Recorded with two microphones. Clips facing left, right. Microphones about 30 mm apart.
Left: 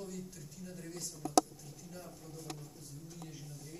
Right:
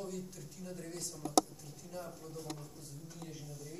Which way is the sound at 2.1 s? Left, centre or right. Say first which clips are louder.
Right 2 dB; right.